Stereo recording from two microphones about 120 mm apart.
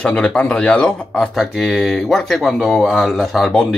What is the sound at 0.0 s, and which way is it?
Speech, 10° left (ahead or behind).